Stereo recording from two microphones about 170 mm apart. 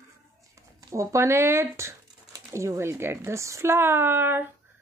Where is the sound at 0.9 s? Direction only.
15° right (ahead or behind).